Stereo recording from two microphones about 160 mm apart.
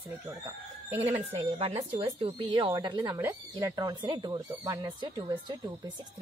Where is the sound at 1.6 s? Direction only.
40° right (ahead or behind).